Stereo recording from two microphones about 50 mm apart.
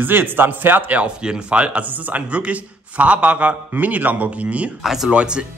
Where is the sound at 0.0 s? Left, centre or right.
Right.